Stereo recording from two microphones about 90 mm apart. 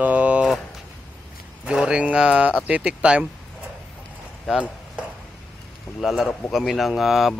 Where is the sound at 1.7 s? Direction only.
10° right (ahead or behind).